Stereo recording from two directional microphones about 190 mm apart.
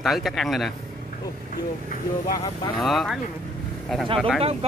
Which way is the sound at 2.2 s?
45° left (ahead or behind).